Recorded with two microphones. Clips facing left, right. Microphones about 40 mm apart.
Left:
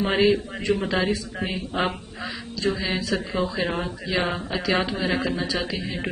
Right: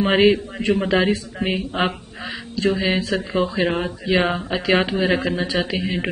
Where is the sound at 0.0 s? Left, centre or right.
Right.